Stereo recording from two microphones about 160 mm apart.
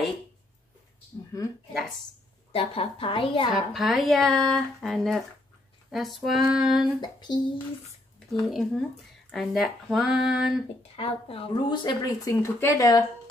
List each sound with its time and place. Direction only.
2.5 s a woman's voice: 35° left (ahead or behind)
3.7 s speech: centre (ahead or behind)
7.0 s speech: 25° left (ahead or behind)
8.3 s speech: centre (ahead or behind)
11.0 s speech: 35° left (ahead or behind); by 13.0 s 20° left (ahead or behind)